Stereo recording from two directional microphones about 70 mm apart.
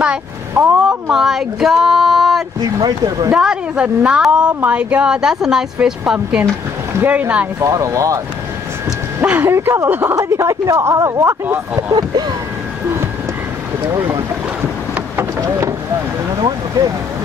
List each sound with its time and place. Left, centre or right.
0.0 s a sound: centre
1.1 s speech: centre
7.1 s speech: right
7.6 s speech: right
9.2 s speech: right
10.1 s speech: right
11.9 s speech: right
16.4 s speech: right